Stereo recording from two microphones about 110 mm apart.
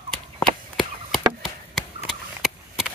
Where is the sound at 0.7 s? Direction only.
Centre (ahead or behind).